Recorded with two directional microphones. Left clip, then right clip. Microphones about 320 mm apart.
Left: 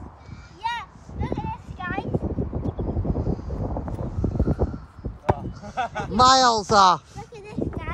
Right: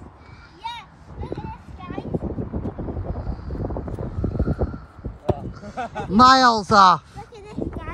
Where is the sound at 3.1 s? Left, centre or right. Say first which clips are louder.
Left 6 dB; centre.